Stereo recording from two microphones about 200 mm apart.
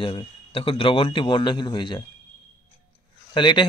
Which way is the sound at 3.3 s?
25° left (ahead or behind).